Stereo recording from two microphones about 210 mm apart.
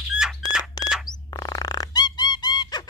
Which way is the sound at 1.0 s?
20° left (ahead or behind).